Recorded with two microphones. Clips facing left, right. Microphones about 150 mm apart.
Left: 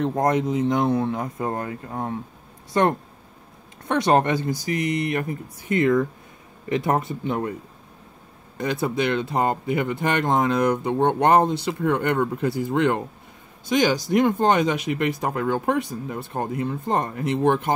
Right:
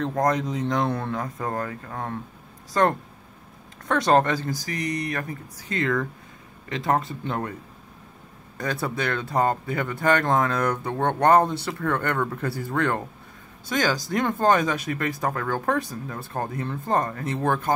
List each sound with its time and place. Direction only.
0.1 s speech: 25° left (ahead or behind)
3.8 s speech: 20° left (ahead or behind)
7.2 s speech: 10° left (ahead or behind)
8.8 s speech: 20° left (ahead or behind)